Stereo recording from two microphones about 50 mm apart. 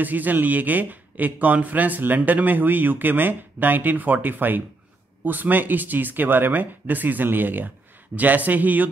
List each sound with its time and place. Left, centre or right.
0.0 s speech: right